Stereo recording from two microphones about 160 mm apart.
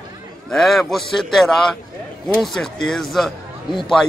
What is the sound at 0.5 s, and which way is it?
A man's voice, centre (ahead or behind).